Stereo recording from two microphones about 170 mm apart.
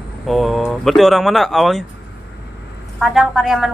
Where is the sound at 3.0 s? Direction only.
Centre (ahead or behind).